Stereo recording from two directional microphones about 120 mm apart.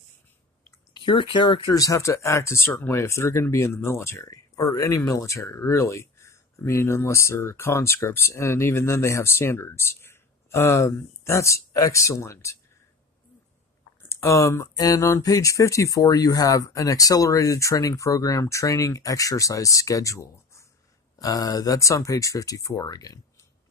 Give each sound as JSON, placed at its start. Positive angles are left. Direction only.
{"t": 0.9, "sound": "speech", "side_deg": 45}
{"t": 1.7, "sound": "speech", "side_deg": 30}
{"t": 14.0, "sound": "speech", "side_deg": 25}